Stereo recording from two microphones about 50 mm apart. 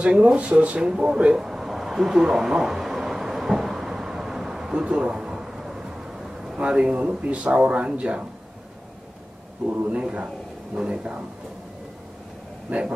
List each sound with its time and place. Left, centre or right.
0.0 s a sound: right
6.6 s speech: centre
9.8 s speech: right
12.6 s speech: right